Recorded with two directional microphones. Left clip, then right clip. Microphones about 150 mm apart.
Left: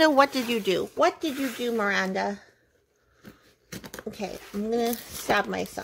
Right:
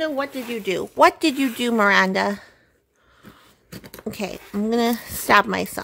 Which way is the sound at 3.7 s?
5° right (ahead or behind).